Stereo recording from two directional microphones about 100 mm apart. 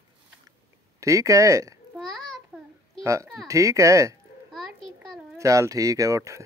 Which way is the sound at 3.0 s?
30° right (ahead or behind).